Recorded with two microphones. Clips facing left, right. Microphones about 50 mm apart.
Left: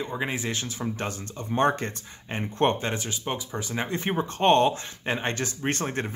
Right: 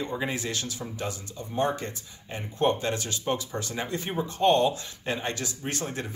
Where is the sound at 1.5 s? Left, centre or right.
Left.